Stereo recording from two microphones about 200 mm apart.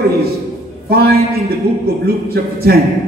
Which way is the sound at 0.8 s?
50° right (ahead or behind).